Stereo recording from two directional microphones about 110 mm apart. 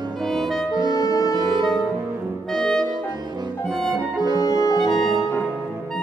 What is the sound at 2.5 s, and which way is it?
Music, 5° left (ahead or behind).